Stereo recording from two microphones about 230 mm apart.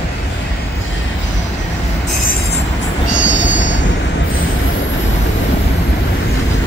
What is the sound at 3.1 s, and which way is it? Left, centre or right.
Train, left.